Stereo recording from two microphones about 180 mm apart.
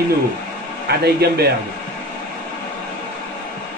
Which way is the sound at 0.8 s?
60° right (ahead or behind).